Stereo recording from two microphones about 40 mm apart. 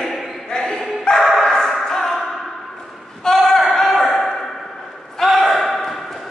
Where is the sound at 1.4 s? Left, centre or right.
Centre.